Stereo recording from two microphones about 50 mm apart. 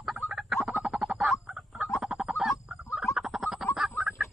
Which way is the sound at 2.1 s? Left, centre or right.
Centre.